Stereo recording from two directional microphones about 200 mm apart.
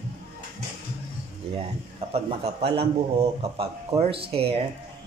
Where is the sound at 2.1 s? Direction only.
30° right (ahead or behind).